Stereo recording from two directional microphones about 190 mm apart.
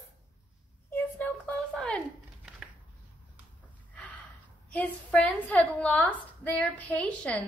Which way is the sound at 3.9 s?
10° left (ahead or behind).